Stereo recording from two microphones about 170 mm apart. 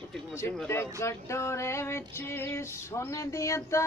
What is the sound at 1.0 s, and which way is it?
Female singing, 15° left (ahead or behind).